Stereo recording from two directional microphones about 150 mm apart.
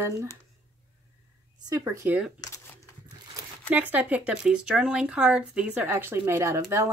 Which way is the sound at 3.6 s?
10° right (ahead or behind).